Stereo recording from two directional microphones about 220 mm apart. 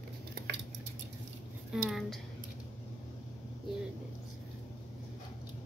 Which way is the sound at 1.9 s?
Centre (ahead or behind).